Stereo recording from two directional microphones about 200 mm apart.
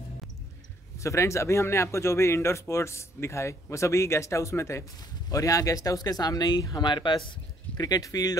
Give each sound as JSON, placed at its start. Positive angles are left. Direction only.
{"t": 0.9, "sound": "speech", "side_deg": 15}